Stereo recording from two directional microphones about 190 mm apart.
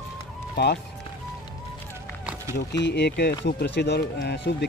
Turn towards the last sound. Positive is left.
turn(degrees=60)  # may be behind; listen again after turning